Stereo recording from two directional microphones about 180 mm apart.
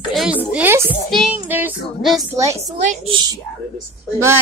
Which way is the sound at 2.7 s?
35° right (ahead or behind).